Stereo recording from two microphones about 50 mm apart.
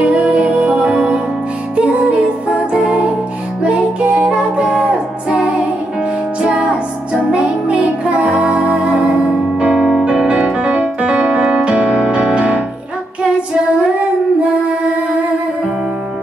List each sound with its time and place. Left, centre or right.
0.0 s music: right
6.4 s music: right